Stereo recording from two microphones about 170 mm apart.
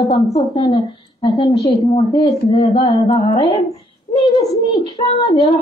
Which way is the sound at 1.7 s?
35° left (ahead or behind).